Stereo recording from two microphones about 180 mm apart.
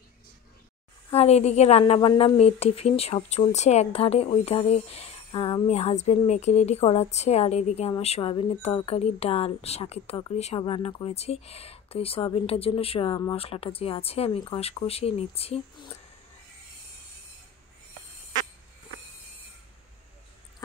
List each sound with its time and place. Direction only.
1.1 s a woman's voice: 35° left (ahead or behind)